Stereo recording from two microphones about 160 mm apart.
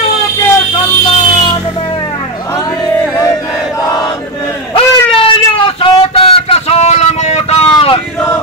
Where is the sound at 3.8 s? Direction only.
25° left (ahead or behind).